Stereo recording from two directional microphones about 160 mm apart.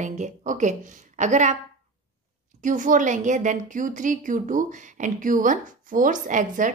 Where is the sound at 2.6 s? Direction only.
55° right (ahead or behind).